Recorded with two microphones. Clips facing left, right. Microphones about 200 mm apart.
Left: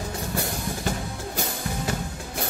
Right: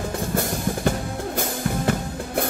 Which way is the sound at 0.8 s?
55° right (ahead or behind).